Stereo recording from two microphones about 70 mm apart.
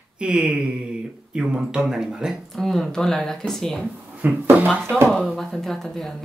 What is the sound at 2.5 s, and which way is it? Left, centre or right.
Speech, centre.